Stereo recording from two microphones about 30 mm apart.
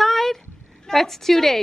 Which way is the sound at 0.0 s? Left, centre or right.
Centre.